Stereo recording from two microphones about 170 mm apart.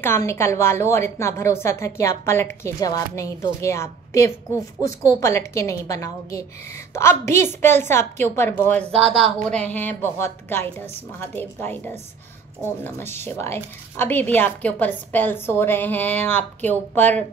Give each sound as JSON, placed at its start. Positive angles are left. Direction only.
{"t": 0.0, "sound": "a woman's voice", "side_deg": 15}
{"t": 8.9, "sound": "speech", "side_deg": -35}
{"t": 9.4, "sound": "a woman's voice", "side_deg": 5}